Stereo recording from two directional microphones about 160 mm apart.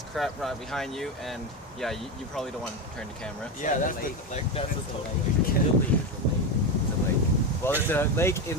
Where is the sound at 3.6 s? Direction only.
55° left (ahead or behind).